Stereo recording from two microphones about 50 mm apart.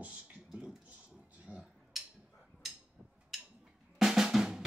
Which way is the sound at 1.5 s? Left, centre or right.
Left.